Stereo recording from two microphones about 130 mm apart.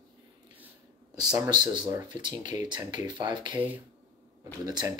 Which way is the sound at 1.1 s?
25° right (ahead or behind).